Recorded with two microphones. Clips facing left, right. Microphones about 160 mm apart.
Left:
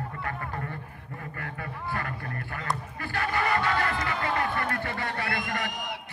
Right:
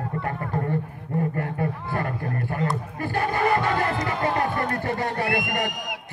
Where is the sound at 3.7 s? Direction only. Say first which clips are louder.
Right 4 dB; 20° right (ahead or behind).